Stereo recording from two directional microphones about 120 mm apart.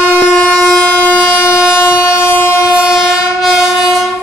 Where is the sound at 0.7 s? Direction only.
20° left (ahead or behind).